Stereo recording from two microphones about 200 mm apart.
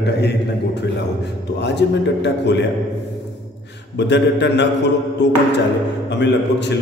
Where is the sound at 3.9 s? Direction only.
60° left (ahead or behind).